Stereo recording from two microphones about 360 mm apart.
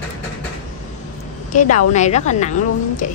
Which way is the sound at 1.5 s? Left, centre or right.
Left.